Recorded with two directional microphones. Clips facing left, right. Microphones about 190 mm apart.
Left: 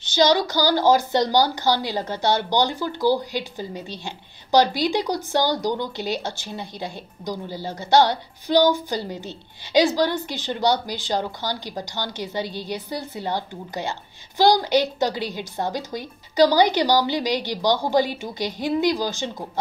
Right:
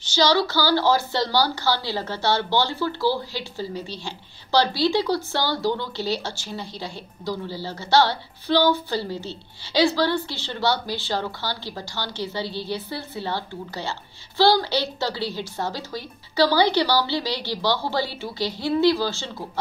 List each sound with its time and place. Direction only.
0.0 s a woman's voice: 20° left (ahead or behind)